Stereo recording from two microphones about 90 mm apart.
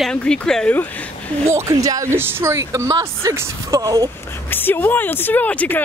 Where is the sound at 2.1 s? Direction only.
30° right (ahead or behind).